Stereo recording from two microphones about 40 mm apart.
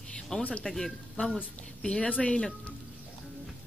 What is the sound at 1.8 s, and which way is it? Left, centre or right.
Speech, left.